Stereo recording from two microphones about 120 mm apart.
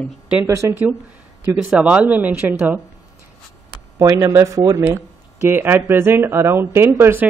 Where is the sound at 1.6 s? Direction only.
5° right (ahead or behind).